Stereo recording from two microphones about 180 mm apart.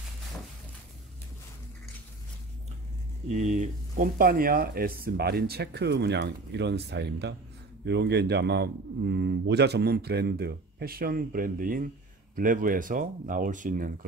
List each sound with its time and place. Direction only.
3.3 s a man's voice: 45° right (ahead or behind)